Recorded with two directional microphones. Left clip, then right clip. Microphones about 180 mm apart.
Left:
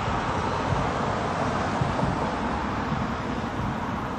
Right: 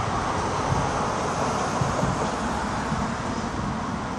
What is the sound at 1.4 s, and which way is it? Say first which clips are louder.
Vehicle: right 1 dB; 45° right (ahead or behind).